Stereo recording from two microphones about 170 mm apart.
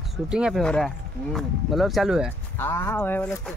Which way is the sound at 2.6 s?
15° left (ahead or behind).